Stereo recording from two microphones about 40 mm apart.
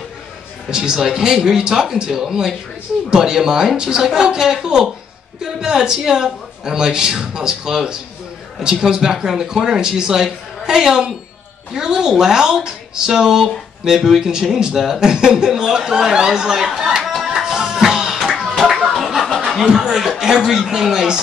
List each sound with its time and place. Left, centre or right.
0.7 s speech: centre
17.6 s music: centre
18.9 s snicker: centre
19.4 s speech: centre